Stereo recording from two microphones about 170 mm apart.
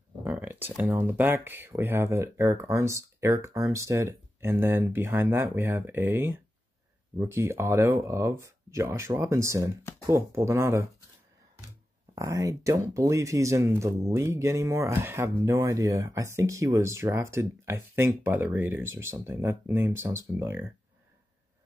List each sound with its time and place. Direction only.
0.2 s speech: 10° right (ahead or behind)
12.2 s speech: 20° right (ahead or behind)